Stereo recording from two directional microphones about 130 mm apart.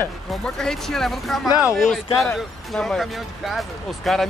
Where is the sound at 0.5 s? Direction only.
5° left (ahead or behind).